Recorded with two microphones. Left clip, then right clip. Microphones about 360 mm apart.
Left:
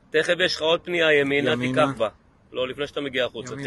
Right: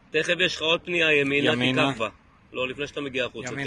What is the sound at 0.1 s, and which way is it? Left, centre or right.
Speech, left.